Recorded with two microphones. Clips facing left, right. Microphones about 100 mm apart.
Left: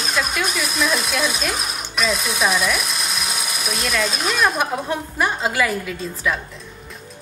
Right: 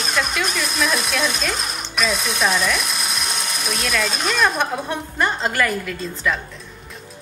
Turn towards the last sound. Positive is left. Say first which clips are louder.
# even
turn(degrees=5)  # may be behind; listen again after turning